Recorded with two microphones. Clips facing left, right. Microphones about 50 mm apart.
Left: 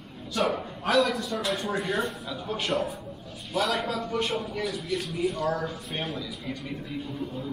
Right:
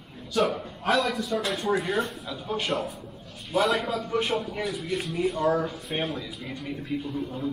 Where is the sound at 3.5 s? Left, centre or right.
Centre.